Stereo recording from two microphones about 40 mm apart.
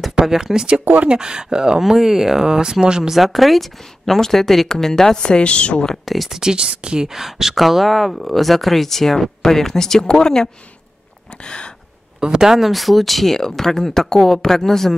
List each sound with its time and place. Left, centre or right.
0.2 s speech: centre
3.0 s speech: centre; by 5.9 s left
6.0 s speech: centre
6.4 s speech: right
7.1 s speech: centre
11.4 s gasp: left
12.2 s speech: centre